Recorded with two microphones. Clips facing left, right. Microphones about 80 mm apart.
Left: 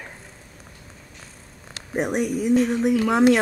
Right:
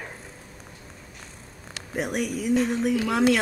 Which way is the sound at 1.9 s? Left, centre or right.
Left.